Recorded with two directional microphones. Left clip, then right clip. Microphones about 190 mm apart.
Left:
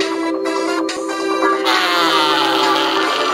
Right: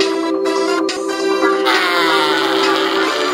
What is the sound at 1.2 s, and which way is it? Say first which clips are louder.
Music: right 1 dB; 40° right (ahead or behind).